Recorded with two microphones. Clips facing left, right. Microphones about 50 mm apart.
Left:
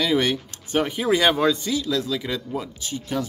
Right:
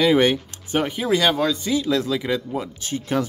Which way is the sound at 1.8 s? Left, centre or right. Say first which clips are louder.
Right 3 dB; right.